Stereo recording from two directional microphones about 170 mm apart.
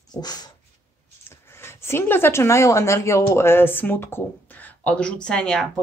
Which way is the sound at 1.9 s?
15° left (ahead or behind).